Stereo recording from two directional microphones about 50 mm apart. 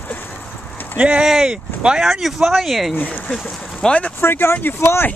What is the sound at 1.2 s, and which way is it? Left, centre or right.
Speech, centre.